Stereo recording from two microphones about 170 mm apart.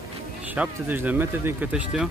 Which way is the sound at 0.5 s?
10° right (ahead or behind).